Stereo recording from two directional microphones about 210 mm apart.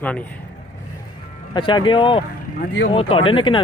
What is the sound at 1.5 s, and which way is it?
Speech, 20° left (ahead or behind).